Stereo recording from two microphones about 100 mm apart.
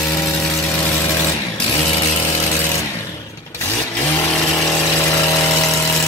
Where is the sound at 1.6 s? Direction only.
55° left (ahead or behind).